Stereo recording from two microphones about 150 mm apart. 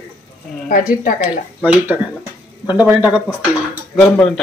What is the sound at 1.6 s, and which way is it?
Speech, 10° right (ahead or behind).